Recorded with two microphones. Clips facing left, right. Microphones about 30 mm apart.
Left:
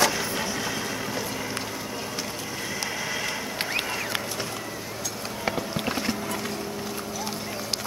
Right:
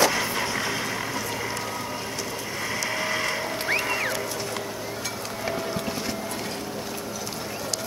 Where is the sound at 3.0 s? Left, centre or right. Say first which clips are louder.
Right 5 dB; right.